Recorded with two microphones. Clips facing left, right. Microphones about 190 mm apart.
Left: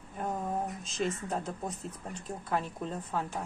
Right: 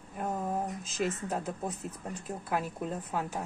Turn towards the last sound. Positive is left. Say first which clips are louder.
# right 1 dB
turn(degrees=-10)  # may be behind; listen again after turning